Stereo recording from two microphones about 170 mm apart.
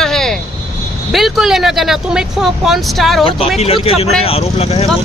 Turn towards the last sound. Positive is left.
turn(degrees=35)  # may be behind; listen again after turning